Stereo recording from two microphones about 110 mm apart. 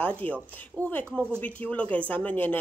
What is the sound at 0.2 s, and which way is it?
Speech, 15° left (ahead or behind).